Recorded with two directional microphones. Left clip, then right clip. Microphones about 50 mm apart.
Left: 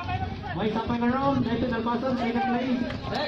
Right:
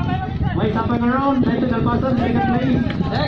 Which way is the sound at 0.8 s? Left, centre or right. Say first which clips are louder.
Right 7 dB; left.